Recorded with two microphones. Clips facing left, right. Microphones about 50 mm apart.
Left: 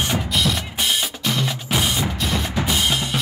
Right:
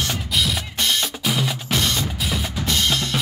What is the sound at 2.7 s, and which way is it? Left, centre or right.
Drum, centre.